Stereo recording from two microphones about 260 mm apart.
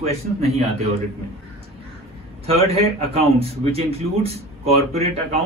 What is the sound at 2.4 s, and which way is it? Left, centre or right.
A man's voice, right.